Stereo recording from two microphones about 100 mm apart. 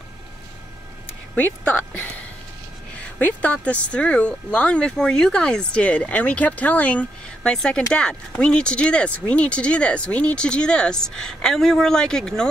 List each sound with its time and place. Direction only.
1.3 s speech: 15° left (ahead or behind)